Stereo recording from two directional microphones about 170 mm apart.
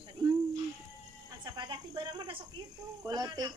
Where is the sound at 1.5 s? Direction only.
25° right (ahead or behind).